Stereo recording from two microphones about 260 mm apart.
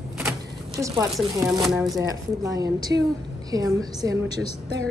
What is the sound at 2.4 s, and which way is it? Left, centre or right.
A woman's voice, centre.